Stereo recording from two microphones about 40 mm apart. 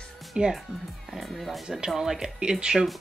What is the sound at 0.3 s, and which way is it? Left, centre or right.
Speech, right.